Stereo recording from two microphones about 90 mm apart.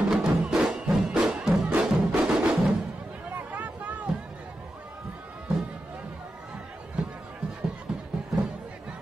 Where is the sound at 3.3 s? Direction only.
20° right (ahead or behind).